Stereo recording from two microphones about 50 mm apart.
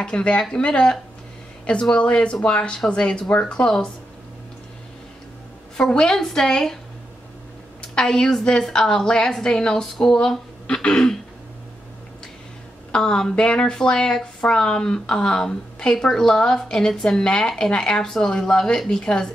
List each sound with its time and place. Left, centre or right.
0.0 s speech: centre
5.8 s speech: centre
7.9 s speech: centre
12.9 s speech: centre